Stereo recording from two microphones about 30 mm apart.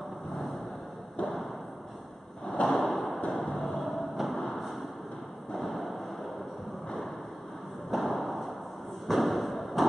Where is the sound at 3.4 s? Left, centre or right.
Centre.